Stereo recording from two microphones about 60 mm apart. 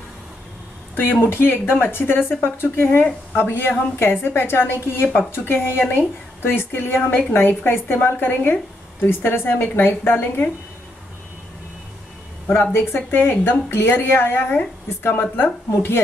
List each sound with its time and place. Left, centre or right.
1.2 s speech: left
12.7 s speech: left